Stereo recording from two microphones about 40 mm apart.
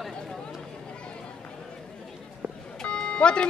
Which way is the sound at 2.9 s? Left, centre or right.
Left.